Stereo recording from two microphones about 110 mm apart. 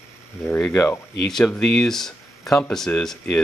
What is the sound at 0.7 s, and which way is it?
Speech, 25° left (ahead or behind).